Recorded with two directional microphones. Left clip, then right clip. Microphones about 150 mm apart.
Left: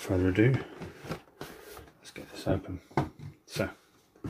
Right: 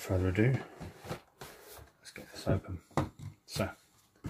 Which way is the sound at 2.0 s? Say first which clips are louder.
Left 3 dB; centre (ahead or behind).